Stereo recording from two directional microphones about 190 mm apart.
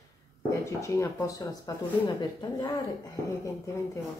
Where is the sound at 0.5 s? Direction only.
15° left (ahead or behind).